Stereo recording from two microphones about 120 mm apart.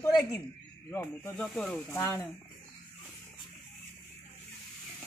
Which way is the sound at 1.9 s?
20° left (ahead or behind).